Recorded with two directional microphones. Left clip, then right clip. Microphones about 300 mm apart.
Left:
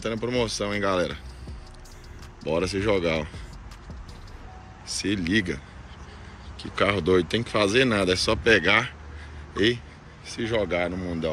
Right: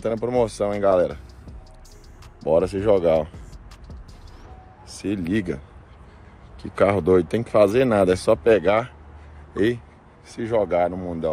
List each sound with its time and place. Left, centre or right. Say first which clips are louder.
0.0 s speech: right 5 dB; centre
2.4 s speech: right 6 dB; centre
4.9 s speech: left 1 dB; centre
6.6 s speech: right 4 dB; centre